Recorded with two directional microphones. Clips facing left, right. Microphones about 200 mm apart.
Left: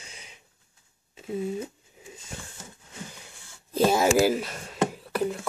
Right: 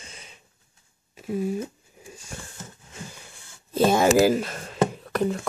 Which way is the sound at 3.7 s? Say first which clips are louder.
Right 2 dB; 10° left (ahead or behind).